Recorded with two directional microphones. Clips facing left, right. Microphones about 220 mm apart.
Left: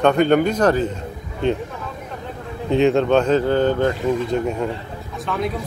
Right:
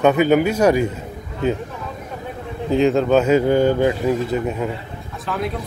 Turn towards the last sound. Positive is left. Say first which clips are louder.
# left 1 dB
turn(degrees=0)  # may be behind; listen again after turning